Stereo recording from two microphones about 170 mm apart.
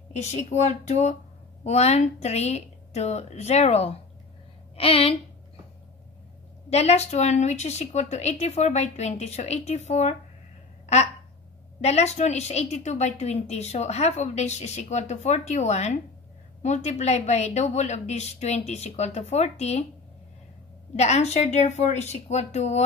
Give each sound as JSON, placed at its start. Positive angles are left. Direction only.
{"t": 0.1, "sound": "a woman's voice", "side_deg": 40}
{"t": 6.7, "sound": "a woman's voice", "side_deg": 40}
{"t": 11.8, "sound": "a woman's voice", "side_deg": 40}
{"t": 20.9, "sound": "a woman's voice", "side_deg": 40}